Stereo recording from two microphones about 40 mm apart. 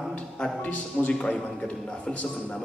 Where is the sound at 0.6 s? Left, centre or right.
Left.